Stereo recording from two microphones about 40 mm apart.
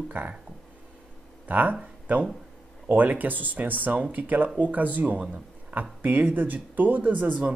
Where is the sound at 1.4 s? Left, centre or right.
Right.